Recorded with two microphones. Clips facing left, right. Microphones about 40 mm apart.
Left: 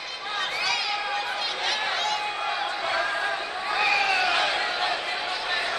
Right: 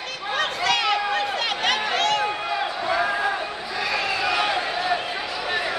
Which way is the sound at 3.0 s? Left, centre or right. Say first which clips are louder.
Right 5 dB; centre.